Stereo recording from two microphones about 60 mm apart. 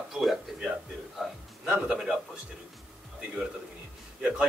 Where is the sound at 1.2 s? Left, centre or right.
Centre.